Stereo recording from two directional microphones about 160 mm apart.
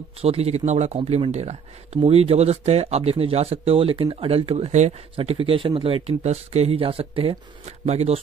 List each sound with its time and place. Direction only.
0.2 s speech: 40° right (ahead or behind)